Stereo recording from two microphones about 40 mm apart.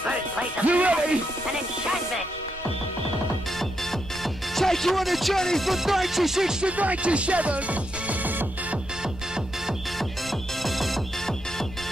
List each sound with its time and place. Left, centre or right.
0.0 s music: right
4.2 s music: centre
6.8 s speech: right
10.6 s music: centre